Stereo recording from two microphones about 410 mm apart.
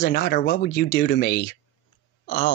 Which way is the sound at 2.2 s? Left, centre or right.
Centre.